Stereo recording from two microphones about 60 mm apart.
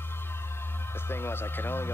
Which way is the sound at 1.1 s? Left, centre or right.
Left.